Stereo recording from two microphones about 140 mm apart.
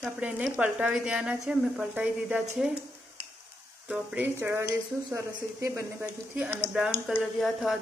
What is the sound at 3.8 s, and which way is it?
Speech, 10° right (ahead or behind).